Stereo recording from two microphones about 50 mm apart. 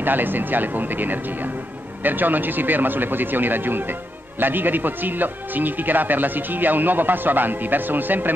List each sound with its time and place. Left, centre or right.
0.0 s a man's voice: right